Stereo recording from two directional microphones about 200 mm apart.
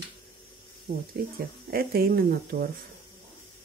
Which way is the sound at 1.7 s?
50° right (ahead or behind).